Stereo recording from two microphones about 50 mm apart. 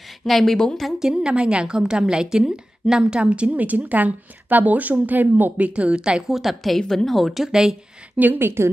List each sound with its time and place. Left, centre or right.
0.2 s a woman's voice: centre
0.9 s a woman's voice: centre; by 5.7 s right
5.8 s a woman's voice: centre
6.2 s speech: centre
6.8 s a woman's voice: centre
7.1 s speech: centre
8.2 s a woman's voice: right